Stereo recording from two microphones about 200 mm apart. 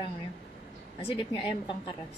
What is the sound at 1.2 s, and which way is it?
Speech, 25° left (ahead or behind).